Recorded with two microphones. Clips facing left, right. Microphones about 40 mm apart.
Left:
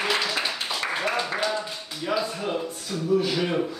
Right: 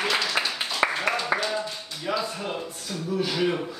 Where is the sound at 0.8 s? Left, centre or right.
Right.